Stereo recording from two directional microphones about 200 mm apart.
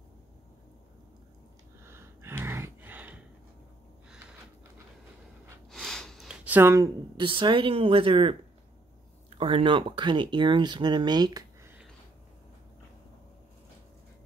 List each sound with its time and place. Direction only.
1.8 s a sound: 10° right (ahead or behind)
5.7 s speech: centre (ahead or behind); by 8.4 s 25° right (ahead or behind)
9.4 s speech: 25° right (ahead or behind)